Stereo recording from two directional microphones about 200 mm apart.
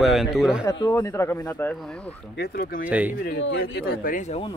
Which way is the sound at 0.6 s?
20° left (ahead or behind).